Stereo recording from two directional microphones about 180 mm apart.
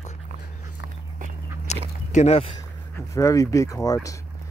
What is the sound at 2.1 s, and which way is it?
Speech, 40° left (ahead or behind).